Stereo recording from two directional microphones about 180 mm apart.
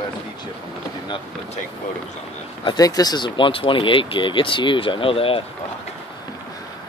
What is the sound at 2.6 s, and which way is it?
Speech, 25° left (ahead or behind).